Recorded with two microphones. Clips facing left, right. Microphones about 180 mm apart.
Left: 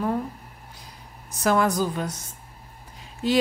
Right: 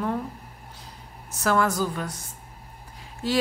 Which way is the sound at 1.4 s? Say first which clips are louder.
Left 2 dB; 15° left (ahead or behind).